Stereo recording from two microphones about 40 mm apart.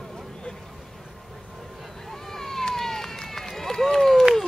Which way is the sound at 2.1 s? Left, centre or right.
Centre.